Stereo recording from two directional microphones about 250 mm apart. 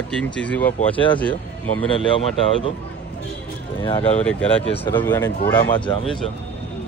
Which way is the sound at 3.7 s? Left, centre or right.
Left.